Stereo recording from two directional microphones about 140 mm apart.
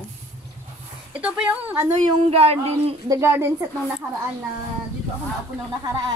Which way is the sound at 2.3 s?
45° right (ahead or behind).